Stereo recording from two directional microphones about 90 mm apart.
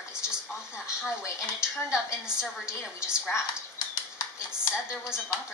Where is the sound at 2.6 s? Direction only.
10° right (ahead or behind).